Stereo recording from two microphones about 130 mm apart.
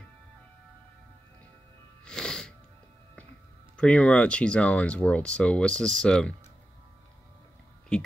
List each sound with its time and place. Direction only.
2.0 s music: 5° left (ahead or behind)
3.7 s speech: 10° left (ahead or behind)